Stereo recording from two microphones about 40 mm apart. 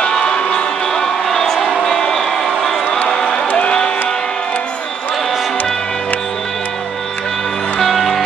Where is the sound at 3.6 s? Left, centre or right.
Left.